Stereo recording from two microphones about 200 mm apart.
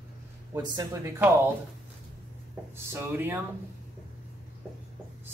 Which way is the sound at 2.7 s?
10° right (ahead or behind).